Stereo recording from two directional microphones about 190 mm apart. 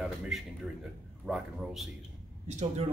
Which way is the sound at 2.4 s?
35° right (ahead or behind).